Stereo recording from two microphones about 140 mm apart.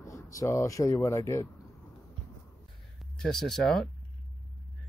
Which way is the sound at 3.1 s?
5° left (ahead or behind).